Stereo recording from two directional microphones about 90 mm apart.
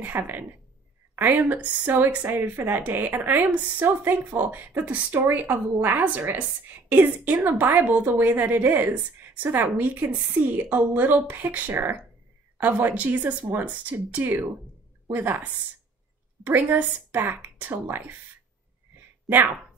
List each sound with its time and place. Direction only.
0.0 s speech: 20° right (ahead or behind)
19.2 s speech: 20° right (ahead or behind)